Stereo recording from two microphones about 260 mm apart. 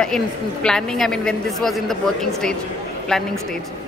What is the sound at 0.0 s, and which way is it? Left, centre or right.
A woman's voice, centre.